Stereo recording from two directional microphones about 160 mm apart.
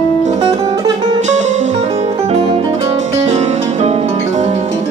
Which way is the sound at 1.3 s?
45° right (ahead or behind).